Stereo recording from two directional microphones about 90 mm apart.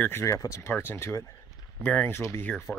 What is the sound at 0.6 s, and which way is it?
Speech, 25° left (ahead or behind).